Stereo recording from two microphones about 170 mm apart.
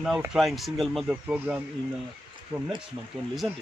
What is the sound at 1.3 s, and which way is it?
Speech, 10° right (ahead or behind).